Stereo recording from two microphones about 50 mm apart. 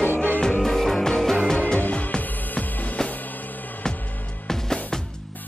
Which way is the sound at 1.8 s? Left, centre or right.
Left.